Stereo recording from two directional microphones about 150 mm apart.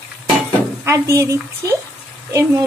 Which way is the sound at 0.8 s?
20° right (ahead or behind).